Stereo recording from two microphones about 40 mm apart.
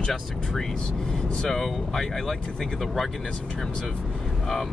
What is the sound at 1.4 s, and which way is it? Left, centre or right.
Speech, centre.